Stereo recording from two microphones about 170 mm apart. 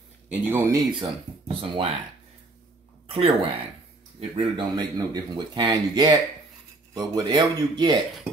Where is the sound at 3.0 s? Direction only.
35° right (ahead or behind).